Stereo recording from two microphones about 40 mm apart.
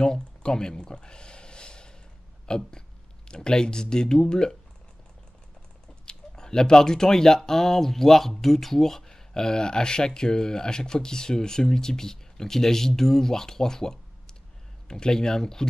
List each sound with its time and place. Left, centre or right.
0.0 s a sound: centre
2.4 s speech: centre
6.0 s speech: centre